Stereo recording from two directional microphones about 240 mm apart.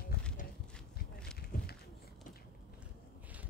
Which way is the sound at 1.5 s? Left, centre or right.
Left.